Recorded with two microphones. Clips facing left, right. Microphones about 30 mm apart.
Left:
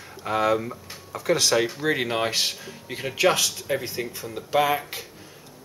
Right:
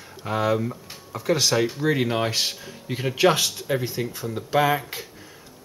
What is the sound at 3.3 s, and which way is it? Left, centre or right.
Speech, right.